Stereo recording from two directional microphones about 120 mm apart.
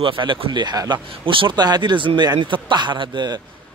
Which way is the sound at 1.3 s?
45° right (ahead or behind).